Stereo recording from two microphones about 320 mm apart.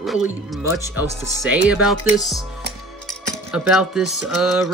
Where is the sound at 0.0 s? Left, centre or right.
Centre.